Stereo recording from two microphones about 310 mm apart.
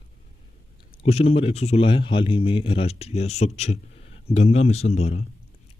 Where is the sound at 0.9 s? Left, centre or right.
Centre.